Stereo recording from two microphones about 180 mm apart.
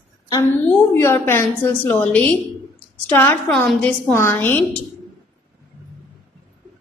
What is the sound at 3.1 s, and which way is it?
A woman's voice, 10° left (ahead or behind).